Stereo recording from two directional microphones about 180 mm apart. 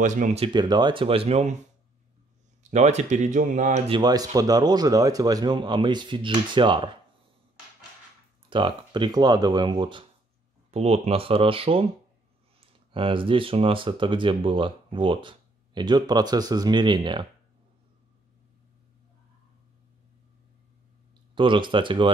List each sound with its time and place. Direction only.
0.0 s speech: 45° right (ahead or behind)
2.7 s speech: 40° right (ahead or behind)
3.9 s speech: 20° right (ahead or behind)
8.5 s speech: 25° right (ahead or behind)
21.4 s speech: 25° right (ahead or behind)